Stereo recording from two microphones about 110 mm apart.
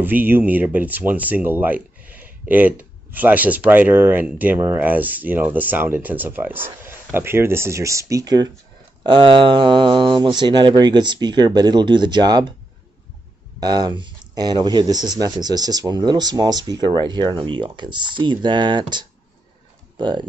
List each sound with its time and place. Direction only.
0.0 s speech: 15° right (ahead or behind); by 8.5 s 35° right (ahead or behind)
9.0 s speech: 45° right (ahead or behind)
13.6 s speech: 40° right (ahead or behind)